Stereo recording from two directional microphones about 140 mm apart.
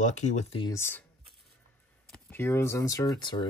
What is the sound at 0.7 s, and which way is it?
Speech, 15° left (ahead or behind).